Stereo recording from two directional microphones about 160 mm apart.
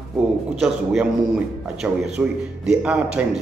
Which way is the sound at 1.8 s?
10° right (ahead or behind).